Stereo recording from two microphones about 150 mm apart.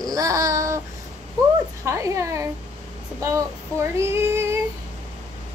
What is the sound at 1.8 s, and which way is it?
Child singing, 20° right (ahead or behind).